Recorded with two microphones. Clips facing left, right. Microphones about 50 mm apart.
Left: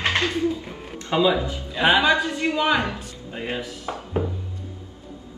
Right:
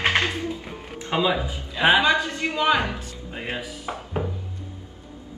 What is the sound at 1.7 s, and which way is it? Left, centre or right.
Speech, centre.